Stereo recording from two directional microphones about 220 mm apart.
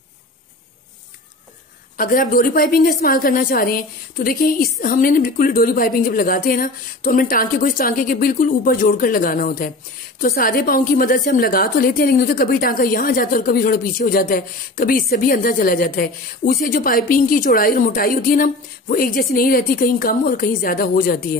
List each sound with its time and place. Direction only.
2.0 s a woman's voice: 40° left (ahead or behind)